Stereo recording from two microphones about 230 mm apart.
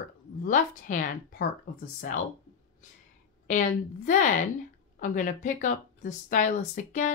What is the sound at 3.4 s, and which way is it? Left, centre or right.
Speech, left.